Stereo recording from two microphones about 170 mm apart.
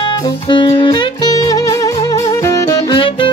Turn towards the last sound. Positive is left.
turn(degrees=30)  # may be behind; listen again after turning